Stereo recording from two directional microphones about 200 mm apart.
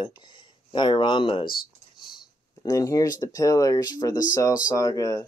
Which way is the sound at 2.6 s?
15° left (ahead or behind).